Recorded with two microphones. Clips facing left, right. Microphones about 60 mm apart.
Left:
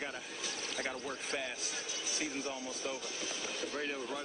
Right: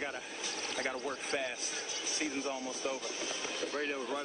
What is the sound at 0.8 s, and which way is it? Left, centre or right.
Speech, right.